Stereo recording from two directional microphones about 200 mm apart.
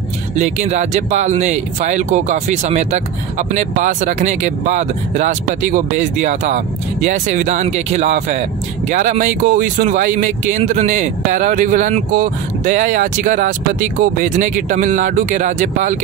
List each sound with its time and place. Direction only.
0.4 s speech: 35° right (ahead or behind)